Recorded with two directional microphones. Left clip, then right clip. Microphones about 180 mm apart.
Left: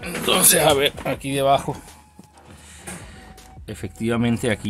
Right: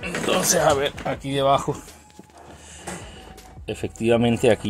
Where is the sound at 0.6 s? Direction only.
30° left (ahead or behind).